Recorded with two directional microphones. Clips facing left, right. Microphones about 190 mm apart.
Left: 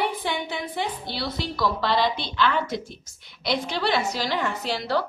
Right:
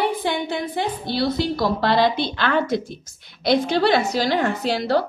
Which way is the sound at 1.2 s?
45° right (ahead or behind).